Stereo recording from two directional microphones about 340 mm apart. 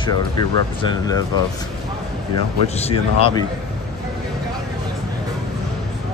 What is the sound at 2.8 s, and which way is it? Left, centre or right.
Speech, centre.